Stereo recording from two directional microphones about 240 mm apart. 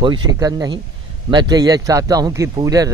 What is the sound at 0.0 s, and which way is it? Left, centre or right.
Speech, centre.